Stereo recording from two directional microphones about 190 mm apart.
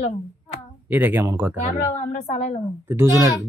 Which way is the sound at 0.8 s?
10° right (ahead or behind).